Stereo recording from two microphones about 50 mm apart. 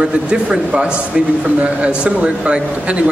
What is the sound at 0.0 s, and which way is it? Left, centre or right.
A man's voice, centre.